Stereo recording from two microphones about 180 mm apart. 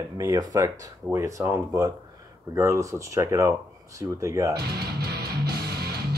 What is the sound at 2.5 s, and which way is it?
Speech, 15° right (ahead or behind).